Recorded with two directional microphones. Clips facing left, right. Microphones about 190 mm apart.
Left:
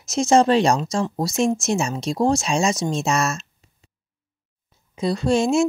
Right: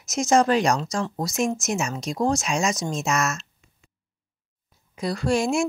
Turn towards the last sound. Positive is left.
turn(degrees=25)  # may be behind; listen again after turning